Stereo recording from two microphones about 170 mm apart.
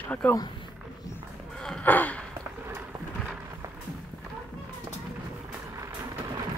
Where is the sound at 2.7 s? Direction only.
15° right (ahead or behind).